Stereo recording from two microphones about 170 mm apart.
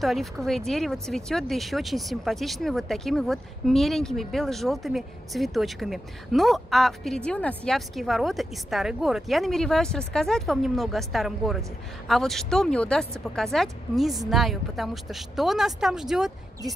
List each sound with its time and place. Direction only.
0.0 s speech: centre (ahead or behind)